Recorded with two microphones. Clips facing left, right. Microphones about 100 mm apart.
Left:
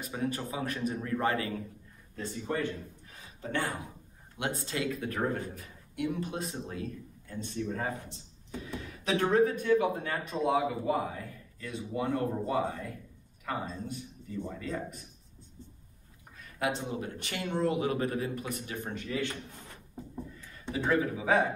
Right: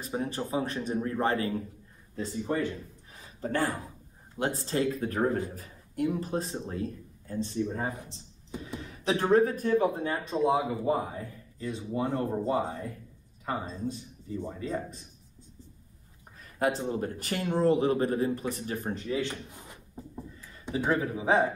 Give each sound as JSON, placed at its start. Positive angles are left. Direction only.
{"t": 0.0, "sound": "a man's voice", "side_deg": -30}
{"t": 3.3, "sound": "a man's voice", "side_deg": -40}
{"t": 9.0, "sound": "a man's voice", "side_deg": -35}
{"t": 10.0, "sound": "a man's voice", "side_deg": -25}
{"t": 16.3, "sound": "a man's voice", "side_deg": -40}
{"t": 19.0, "sound": "a man's voice", "side_deg": -20}
{"t": 20.9, "sound": "a man's voice", "side_deg": -30}